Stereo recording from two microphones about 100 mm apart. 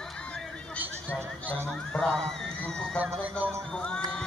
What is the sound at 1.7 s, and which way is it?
Whistle, 5° left (ahead or behind).